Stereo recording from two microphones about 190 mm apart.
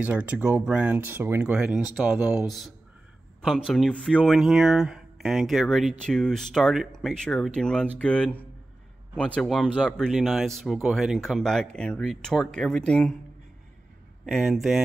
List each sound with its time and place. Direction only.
0.0 s speech: 10° right (ahead or behind)
3.4 s speech: 5° left (ahead or behind)
14.2 s speech: centre (ahead or behind)